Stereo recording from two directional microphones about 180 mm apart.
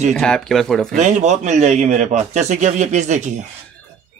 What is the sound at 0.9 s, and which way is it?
Speech, 45° right (ahead or behind).